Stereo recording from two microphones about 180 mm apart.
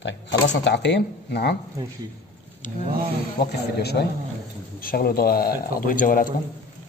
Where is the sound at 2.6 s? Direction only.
45° left (ahead or behind).